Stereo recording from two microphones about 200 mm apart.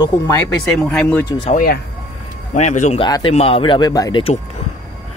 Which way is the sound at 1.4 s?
40° left (ahead or behind).